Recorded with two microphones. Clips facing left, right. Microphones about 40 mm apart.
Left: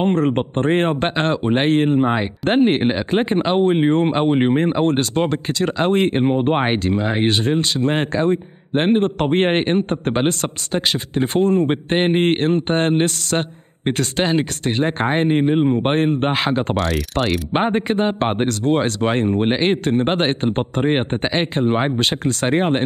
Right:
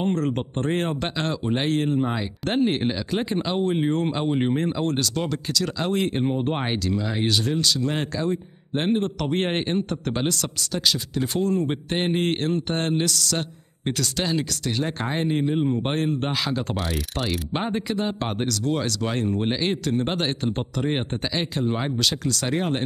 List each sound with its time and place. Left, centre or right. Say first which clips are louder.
0.0 s speech: left 7 dB; left
16.7 s speech: left 8 dB; centre
17.2 s speech: left 9 dB; left